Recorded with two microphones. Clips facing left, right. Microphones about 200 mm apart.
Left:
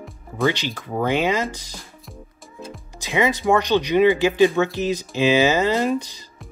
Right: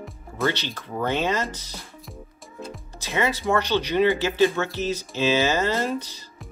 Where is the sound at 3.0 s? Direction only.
15° left (ahead or behind).